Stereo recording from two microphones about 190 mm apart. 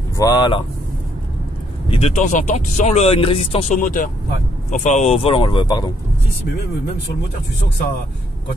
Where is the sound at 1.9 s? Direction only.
35° left (ahead or behind).